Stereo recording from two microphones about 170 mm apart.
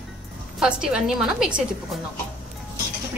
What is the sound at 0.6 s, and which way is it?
A woman's voice, 5° right (ahead or behind).